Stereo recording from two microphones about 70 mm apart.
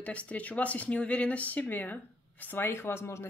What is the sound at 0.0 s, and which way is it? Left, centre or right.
Speech, centre.